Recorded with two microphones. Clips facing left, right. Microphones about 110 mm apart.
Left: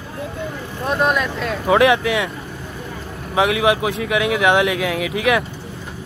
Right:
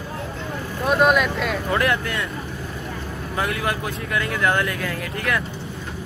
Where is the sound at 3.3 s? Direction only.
90° left.